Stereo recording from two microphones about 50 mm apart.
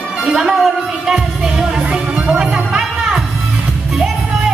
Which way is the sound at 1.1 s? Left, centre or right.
Centre.